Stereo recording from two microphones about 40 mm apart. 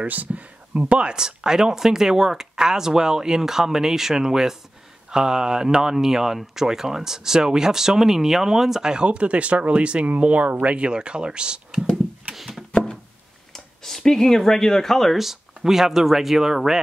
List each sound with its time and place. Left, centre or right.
0.0 s speech: right
1.1 s speech: centre
8.9 s speech: right
10.9 s speech: right
13.5 s speech: centre
15.1 s speech: centre